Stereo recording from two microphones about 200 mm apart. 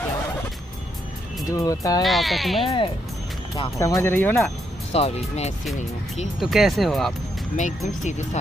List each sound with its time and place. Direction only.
1.5 s speech: 15° left (ahead or behind)
2.0 s speech: centre (ahead or behind)
2.6 s speech: 25° left (ahead or behind)
3.8 s speech: 15° left (ahead or behind)
4.9 s speech: 30° left (ahead or behind)
6.4 s speech: centre (ahead or behind)
7.5 s speech: 40° left (ahead or behind)